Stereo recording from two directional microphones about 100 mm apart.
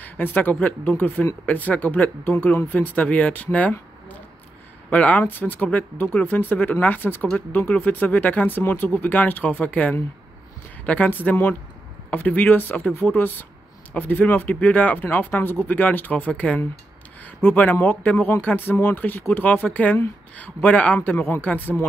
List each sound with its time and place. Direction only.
0.0 s speech: 20° left (ahead or behind)
4.8 s speech: 15° left (ahead or behind)